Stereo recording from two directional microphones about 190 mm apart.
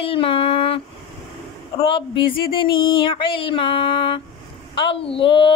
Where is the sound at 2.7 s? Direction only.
25° left (ahead or behind).